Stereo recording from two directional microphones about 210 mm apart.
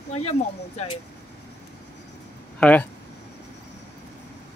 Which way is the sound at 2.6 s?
5° left (ahead or behind).